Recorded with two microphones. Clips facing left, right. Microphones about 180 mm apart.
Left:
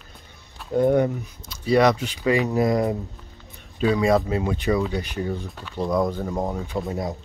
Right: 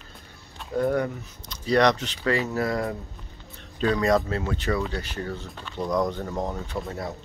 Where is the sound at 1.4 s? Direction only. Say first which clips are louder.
Left 2 dB; 10° left (ahead or behind).